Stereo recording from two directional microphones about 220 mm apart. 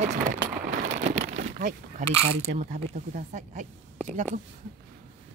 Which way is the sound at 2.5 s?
35° right (ahead or behind).